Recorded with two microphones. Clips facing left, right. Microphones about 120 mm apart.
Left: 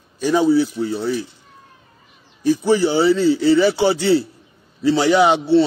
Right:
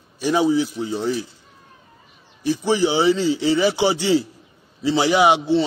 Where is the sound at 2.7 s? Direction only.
15° right (ahead or behind).